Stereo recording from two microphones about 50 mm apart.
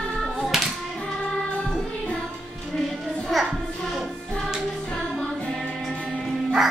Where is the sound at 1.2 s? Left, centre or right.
Centre.